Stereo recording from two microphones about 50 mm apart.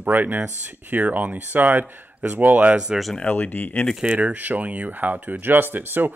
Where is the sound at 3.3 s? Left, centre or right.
Left.